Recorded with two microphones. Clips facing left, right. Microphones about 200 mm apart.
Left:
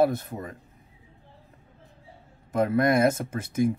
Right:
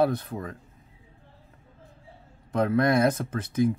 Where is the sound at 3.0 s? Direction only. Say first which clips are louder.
Left 1 dB; 25° left (ahead or behind).